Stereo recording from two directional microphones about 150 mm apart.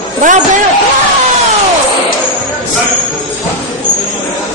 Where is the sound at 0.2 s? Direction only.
60° right (ahead or behind).